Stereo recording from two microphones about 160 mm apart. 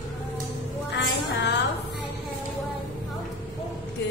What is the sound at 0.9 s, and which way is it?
Music, 90° left.